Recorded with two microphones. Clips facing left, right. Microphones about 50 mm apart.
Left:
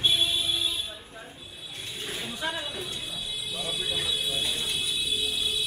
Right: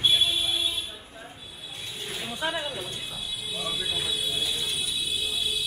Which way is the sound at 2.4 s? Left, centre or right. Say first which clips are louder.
Right 4 dB; centre.